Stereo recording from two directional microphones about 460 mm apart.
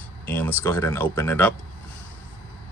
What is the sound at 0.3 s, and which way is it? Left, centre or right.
Speech, centre.